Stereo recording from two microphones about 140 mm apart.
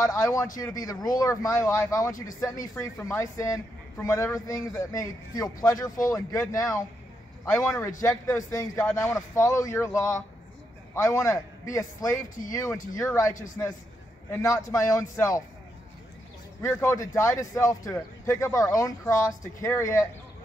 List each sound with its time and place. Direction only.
0.0 s speech: 20° left (ahead or behind)
16.6 s speech: 20° left (ahead or behind)